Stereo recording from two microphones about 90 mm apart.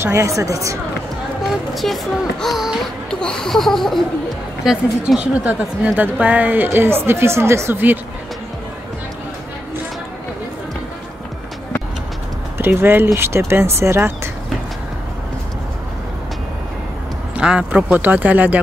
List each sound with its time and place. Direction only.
0.0 s a woman's voice: 35° right (ahead or behind)
1.5 s speech: centre (ahead or behind)
3.1 s speech: 10° left (ahead or behind)
4.6 s a woman's voice: 10° right (ahead or behind)
12.5 s a woman's voice: 25° right (ahead or behind)
17.4 s speech: 10° right (ahead or behind)